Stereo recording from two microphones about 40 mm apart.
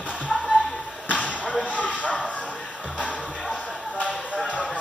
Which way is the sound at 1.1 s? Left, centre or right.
Left.